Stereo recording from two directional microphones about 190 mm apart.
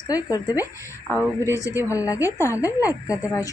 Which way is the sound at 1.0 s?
10° right (ahead or behind).